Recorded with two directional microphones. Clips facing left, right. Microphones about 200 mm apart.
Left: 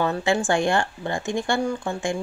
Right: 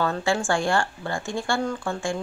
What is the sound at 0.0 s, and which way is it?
Speech, 20° left (ahead or behind).